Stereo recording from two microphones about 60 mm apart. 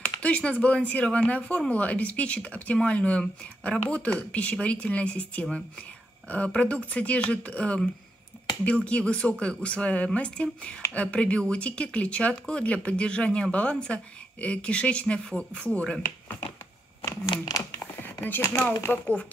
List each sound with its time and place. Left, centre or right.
0.2 s speech: left
8.8 s speech: left
17.0 s speech: left
17.9 s a sound: left
18.9 s speech: left